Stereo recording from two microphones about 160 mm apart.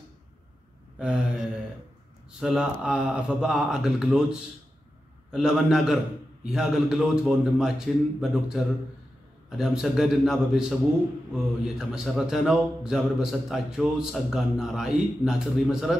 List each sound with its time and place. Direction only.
0.9 s speech: 5° right (ahead or behind)